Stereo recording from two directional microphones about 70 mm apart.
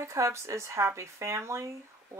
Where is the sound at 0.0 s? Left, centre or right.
Right.